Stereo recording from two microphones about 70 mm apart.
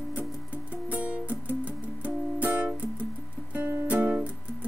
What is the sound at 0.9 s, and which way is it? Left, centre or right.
Music, right.